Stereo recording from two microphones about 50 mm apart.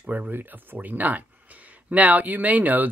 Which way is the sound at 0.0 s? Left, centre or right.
Right.